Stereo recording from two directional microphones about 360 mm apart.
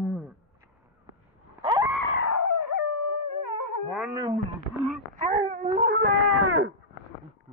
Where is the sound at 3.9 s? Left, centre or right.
Centre.